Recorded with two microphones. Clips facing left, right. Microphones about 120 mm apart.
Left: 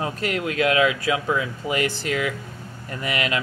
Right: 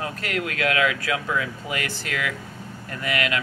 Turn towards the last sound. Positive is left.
turn(degrees=25)  # may be behind; listen again after turning